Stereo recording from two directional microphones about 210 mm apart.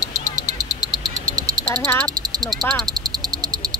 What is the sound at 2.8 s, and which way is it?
Frog, 20° right (ahead or behind).